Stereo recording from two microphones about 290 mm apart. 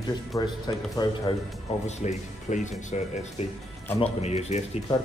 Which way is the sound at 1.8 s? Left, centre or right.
Left.